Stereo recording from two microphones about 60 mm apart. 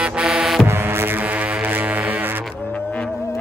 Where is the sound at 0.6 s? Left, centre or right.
Right.